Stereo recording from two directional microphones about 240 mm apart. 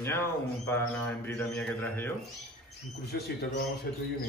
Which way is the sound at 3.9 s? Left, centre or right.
Left.